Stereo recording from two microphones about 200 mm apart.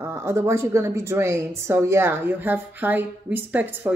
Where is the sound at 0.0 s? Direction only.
15° right (ahead or behind).